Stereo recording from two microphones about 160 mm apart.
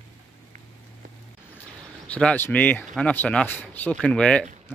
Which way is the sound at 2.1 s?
10° left (ahead or behind).